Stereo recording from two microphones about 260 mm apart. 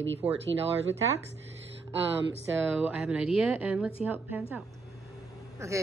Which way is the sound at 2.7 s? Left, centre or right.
Centre.